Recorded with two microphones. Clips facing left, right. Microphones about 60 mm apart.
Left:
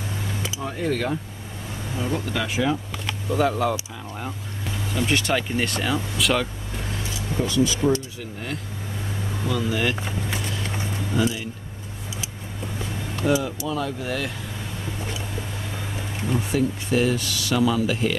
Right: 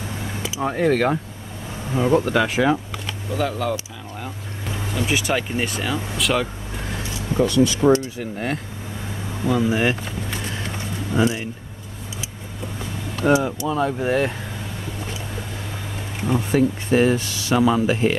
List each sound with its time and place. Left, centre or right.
0.6 s speech: right
3.3 s speech: centre
4.9 s speech: centre
7.2 s speech: right
9.5 s speech: right
11.2 s speech: right
13.2 s speech: right
13.7 s speech: right
16.3 s speech: right